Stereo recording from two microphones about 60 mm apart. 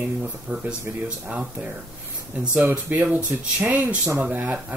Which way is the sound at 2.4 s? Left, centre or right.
Right.